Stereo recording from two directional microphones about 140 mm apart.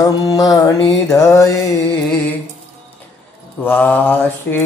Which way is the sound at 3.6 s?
15° left (ahead or behind).